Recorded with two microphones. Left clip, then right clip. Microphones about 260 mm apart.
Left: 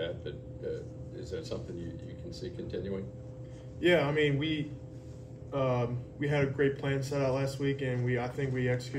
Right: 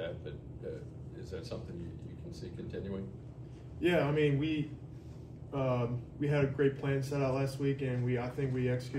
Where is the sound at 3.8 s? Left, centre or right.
Centre.